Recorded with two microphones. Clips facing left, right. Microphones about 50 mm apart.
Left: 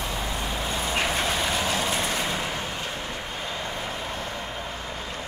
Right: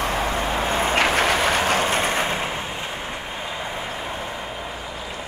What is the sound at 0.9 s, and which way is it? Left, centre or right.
Vehicle, right.